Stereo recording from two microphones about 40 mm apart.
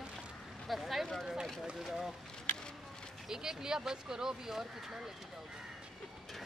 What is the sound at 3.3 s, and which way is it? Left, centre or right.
Speech, centre.